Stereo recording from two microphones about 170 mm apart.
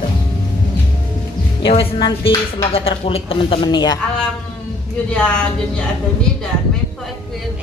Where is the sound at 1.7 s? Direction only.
30° left (ahead or behind).